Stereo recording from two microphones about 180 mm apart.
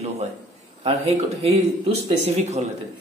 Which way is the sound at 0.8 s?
30° right (ahead or behind).